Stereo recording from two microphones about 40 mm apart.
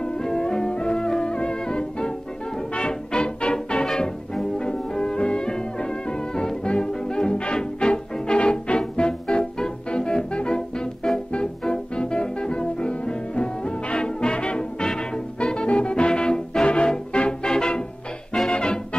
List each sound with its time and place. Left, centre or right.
0.0 s music: centre